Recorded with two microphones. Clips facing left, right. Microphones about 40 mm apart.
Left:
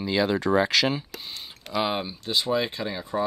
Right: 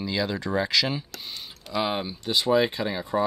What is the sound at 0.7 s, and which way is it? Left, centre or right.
Speech, left.